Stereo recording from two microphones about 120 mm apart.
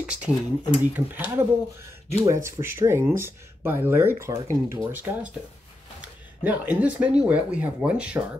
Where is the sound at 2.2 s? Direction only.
25° right (ahead or behind).